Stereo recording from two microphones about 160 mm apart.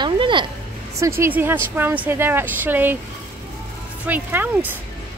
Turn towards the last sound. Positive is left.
turn(degrees=-10)  # may be behind; listen again after turning